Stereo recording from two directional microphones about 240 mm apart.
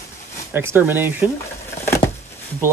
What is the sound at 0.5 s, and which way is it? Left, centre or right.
Speech, centre.